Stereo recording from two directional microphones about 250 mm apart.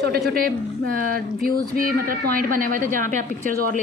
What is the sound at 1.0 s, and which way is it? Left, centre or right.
A woman's voice, right.